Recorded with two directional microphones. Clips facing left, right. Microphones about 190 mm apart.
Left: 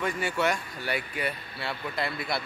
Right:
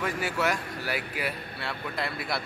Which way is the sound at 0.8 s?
5° right (ahead or behind).